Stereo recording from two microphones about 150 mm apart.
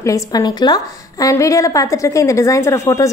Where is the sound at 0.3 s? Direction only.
25° left (ahead or behind).